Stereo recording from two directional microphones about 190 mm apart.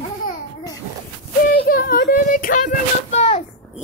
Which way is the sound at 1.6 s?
55° left (ahead or behind).